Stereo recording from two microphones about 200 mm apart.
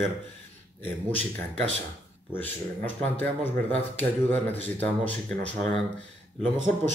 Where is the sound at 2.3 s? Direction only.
10° left (ahead or behind).